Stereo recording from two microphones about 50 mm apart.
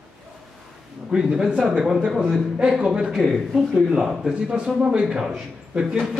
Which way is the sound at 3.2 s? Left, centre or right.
Centre.